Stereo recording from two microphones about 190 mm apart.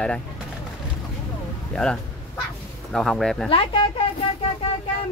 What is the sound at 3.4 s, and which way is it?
Speech, 30° left (ahead or behind).